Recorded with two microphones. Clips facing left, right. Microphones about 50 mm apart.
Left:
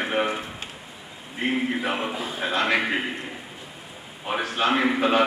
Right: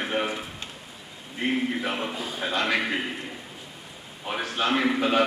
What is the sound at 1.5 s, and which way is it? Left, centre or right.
A man's voice, centre.